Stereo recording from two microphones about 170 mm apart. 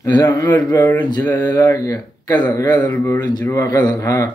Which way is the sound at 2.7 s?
10° left (ahead or behind).